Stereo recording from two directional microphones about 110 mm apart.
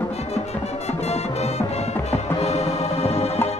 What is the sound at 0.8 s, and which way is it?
Music, 75° left (ahead or behind).